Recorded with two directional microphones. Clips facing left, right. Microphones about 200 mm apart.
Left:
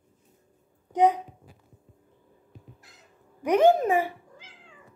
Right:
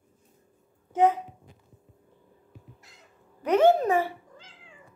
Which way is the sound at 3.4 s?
15° left (ahead or behind).